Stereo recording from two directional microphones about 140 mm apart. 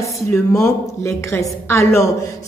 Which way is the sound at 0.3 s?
20° left (ahead or behind).